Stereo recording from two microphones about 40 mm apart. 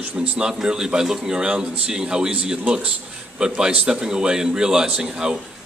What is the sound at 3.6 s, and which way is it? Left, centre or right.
A man's voice, centre.